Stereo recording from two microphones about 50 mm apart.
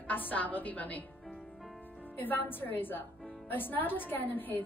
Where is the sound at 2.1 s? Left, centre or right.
Left.